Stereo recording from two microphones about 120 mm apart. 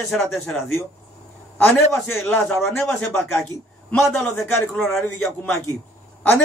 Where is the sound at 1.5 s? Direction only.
15° left (ahead or behind).